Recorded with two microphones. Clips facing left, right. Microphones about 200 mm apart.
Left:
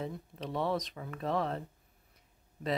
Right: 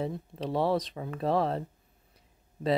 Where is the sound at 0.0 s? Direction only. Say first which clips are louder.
Right 6 dB; 35° right (ahead or behind).